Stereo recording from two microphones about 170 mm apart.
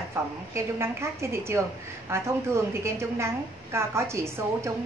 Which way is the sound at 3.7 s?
15° right (ahead or behind).